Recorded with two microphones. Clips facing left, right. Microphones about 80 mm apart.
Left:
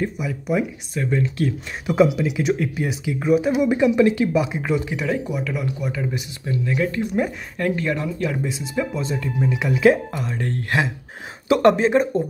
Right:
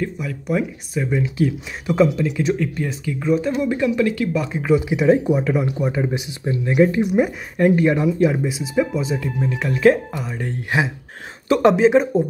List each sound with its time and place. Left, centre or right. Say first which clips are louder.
0.0 s speech: even; centre
2.0 s speech: even; centre
4.7 s speech: right 7 dB; centre
5.0 s speech: right 8 dB; right
8.5 s speech: right 4 dB; centre
9.5 s speech: right 1 dB; centre